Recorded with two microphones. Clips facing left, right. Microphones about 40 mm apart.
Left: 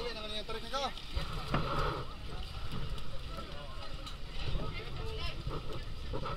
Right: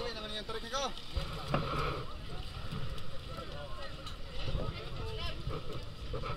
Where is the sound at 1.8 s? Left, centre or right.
Centre.